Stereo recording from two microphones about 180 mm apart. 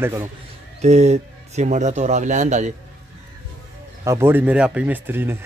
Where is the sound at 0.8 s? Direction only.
40° right (ahead or behind).